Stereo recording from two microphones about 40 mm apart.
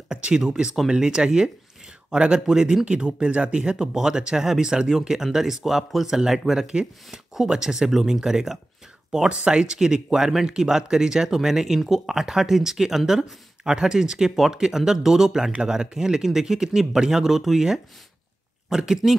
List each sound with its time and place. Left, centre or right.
0.1 s a sound: right
0.5 s speech: right
3.7 s speech: centre
6.6 s speech: centre
9.3 s speech: right